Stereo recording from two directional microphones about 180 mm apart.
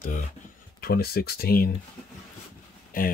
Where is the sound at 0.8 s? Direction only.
60° left (ahead or behind).